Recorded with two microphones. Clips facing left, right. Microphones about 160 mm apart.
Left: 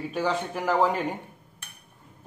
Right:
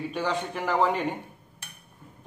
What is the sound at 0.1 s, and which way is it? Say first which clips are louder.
Speech: left 4 dB; 5° left (ahead or behind).